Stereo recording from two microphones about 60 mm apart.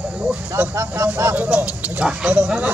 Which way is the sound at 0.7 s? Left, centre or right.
Right.